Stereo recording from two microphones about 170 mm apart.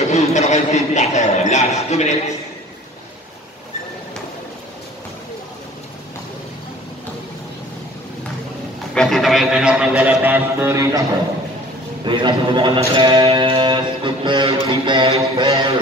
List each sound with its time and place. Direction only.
0.1 s a man's voice: 40° left (ahead or behind)
8.9 s a man's voice: centre (ahead or behind); by 11.1 s 20° right (ahead or behind)
12.0 s music: 25° right (ahead or behind)